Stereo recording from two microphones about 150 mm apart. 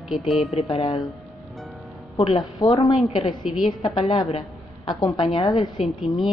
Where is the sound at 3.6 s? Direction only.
30° left (ahead or behind).